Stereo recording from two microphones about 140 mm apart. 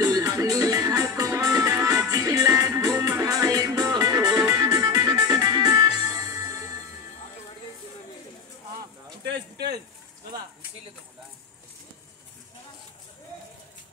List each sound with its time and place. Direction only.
0.0 s music: 25° right (ahead or behind)